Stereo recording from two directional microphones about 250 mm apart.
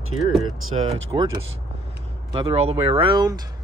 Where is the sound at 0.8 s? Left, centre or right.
Right.